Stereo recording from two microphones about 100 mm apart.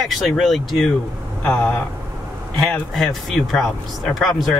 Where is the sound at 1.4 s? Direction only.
15° left (ahead or behind).